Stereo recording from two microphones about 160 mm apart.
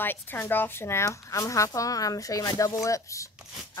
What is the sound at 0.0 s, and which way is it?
Speech, 15° left (ahead or behind).